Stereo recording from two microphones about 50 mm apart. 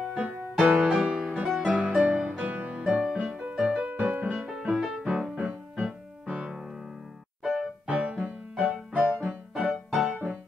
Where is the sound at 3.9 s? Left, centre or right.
Right.